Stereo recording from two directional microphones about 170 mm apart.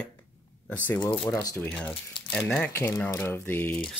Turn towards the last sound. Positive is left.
turn(degrees=10)  # may be behind; listen again after turning